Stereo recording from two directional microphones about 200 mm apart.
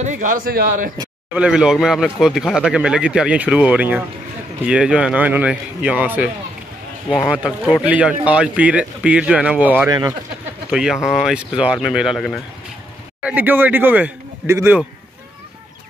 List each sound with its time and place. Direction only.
0.0 s speech: 40° right (ahead or behind)
1.3 s speech: 5° right (ahead or behind)